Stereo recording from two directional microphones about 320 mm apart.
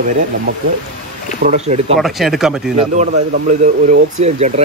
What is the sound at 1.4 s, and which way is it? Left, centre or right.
Speech, right.